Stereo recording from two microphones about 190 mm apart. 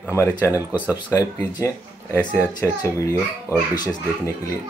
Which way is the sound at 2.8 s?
20° left (ahead or behind).